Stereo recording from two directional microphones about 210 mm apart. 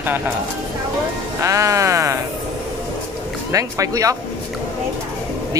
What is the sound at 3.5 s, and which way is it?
Speech, 15° right (ahead or behind).